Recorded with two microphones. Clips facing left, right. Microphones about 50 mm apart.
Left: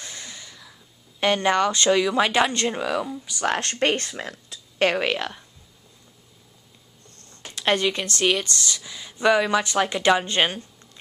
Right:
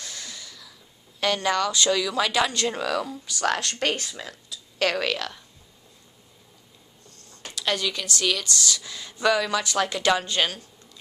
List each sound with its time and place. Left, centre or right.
0.0 s a sound: left
1.2 s a woman's voice: left
2.7 s speech: centre
4.1 s a sound: left
4.9 s a woman's voice: left
7.5 s speech: left; by 9.3 s centre
9.3 s a woman's voice: left